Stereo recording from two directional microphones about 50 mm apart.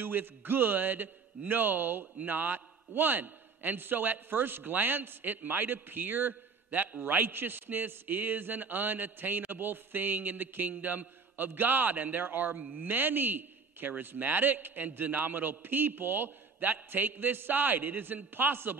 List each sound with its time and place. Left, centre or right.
0.0 s a man's voice: right